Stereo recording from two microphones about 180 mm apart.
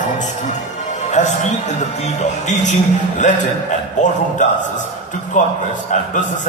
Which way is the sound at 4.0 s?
45° left (ahead or behind).